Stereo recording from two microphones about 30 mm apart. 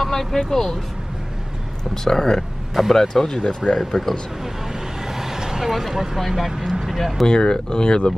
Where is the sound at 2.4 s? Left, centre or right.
Centre.